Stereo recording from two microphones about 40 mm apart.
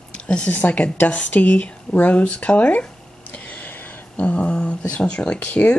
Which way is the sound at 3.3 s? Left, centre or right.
Left.